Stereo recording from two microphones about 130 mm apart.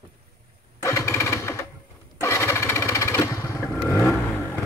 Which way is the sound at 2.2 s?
20° left (ahead or behind).